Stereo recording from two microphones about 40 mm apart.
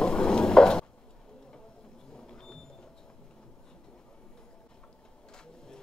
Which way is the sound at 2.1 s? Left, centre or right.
Centre.